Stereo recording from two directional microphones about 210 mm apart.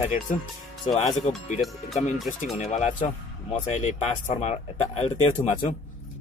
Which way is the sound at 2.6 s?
35° left (ahead or behind).